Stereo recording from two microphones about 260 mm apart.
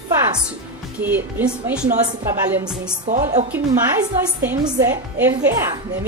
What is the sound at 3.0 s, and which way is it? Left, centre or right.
Speech, right.